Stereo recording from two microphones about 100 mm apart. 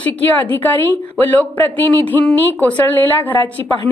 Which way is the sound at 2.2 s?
15° left (ahead or behind).